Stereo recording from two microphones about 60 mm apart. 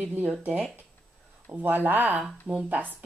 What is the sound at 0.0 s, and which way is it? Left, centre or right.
Speech, right.